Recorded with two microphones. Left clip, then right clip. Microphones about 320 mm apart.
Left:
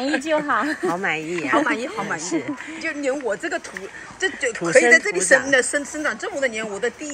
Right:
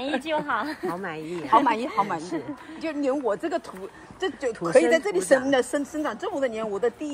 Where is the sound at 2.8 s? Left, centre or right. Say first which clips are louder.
Left 1 dB; right.